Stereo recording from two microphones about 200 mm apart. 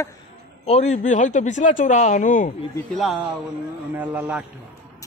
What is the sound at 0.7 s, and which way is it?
Speech, 35° left (ahead or behind).